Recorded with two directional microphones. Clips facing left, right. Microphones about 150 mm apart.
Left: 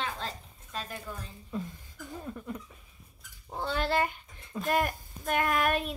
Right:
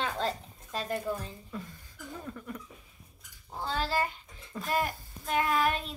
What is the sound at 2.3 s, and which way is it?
Speech, 20° left (ahead or behind).